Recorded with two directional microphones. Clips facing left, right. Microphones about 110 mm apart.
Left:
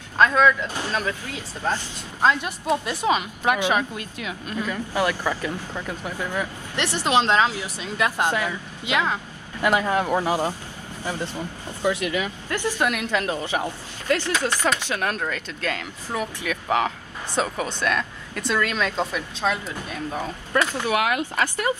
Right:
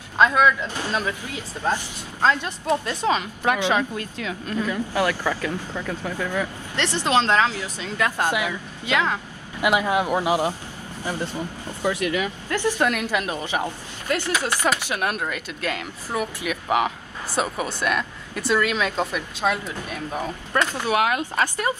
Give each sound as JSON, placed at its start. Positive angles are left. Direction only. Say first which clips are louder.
{"t": 0.2, "sound": "speech", "louder": "even", "side_deg": -15}
{"t": 2.2, "sound": "speech", "louder": "even", "side_deg": 15}
{"t": 8.3, "sound": "speech", "louder": "even", "side_deg": -10}
{"t": 8.8, "sound": "speech", "louder": "right 1 dB", "side_deg": 15}
{"t": 9.6, "sound": "speech", "louder": "even", "side_deg": -10}
{"t": 11.8, "sound": "speech", "louder": "even", "side_deg": 20}
{"t": 13.0, "sound": "speech", "louder": "left 1 dB", "side_deg": -15}
{"t": 20.9, "sound": "speech", "louder": "right 2 dB", "side_deg": -25}